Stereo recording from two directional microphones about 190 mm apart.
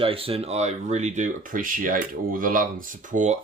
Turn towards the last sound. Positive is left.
turn(degrees=-40)  # may be behind; listen again after turning